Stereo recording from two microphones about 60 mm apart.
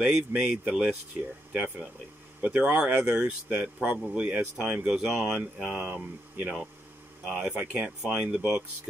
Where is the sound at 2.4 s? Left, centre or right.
Centre.